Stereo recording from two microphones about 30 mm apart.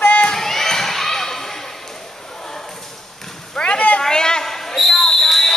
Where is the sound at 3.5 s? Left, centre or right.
Left.